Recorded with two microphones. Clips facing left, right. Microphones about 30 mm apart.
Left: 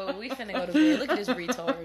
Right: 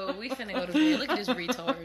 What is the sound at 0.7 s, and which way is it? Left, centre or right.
Speech, centre.